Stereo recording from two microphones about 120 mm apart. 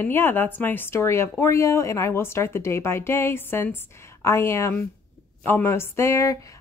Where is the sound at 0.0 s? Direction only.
15° left (ahead or behind).